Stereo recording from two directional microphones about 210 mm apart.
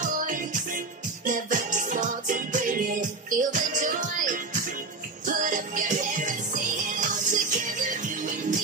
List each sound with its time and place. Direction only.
0.0 s music: 40° right (ahead or behind)